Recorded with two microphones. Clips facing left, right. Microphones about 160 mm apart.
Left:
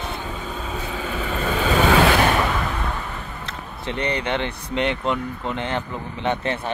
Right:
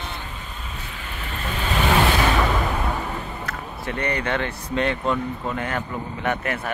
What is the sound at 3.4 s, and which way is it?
Speech, 20° left (ahead or behind).